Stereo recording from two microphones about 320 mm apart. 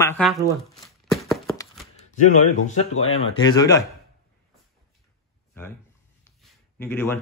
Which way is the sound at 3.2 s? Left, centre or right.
Centre.